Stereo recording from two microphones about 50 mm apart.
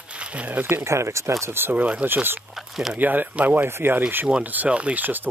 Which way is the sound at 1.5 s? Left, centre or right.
Right.